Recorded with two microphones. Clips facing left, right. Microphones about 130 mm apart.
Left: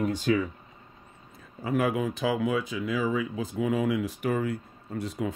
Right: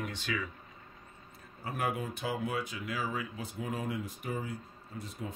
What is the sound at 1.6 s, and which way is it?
Speech, 90° left.